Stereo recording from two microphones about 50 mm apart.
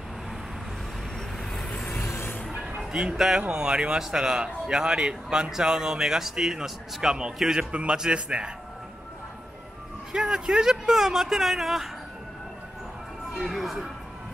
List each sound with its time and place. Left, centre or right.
1.4 s vehicle: centre
2.9 s a man's voice: centre
10.1 s speech: centre
13.3 s speech: centre